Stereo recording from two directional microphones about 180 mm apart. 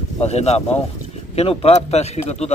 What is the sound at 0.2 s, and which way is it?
A man's voice, 35° left (ahead or behind).